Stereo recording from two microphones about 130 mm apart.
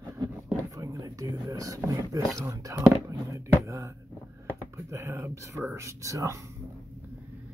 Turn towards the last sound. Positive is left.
turn(degrees=-25)  # may be behind; listen again after turning